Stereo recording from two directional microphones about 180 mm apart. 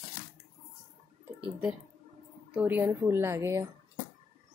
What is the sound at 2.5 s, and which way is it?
Speech, 10° right (ahead or behind).